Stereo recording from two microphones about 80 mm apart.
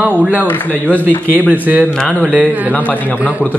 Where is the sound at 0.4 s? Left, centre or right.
Left.